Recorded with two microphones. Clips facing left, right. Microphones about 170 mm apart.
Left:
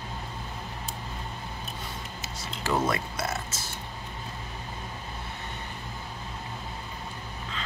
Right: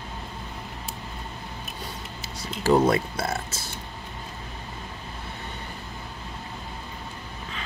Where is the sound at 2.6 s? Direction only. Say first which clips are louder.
Right 8 dB; 30° right (ahead or behind).